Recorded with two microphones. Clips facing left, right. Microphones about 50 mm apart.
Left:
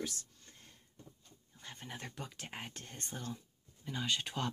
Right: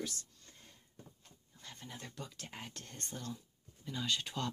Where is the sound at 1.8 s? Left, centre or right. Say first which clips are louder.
Left 3 dB; left.